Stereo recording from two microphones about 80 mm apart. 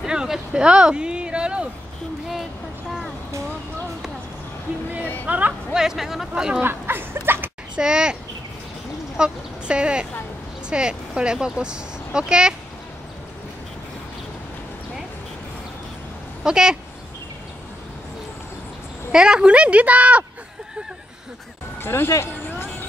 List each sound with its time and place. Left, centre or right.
0.0 s speech: centre
5.2 s speech: centre
5.7 s a woman's voice: centre
6.6 s speech: right
7.7 s a woman's voice: centre
16.4 s a woman's voice: centre
19.1 s a woman's voice: centre
21.8 s speech: left
22.5 s a sound: left